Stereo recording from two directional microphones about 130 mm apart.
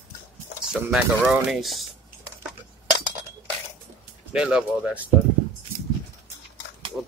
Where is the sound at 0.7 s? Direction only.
10° right (ahead or behind).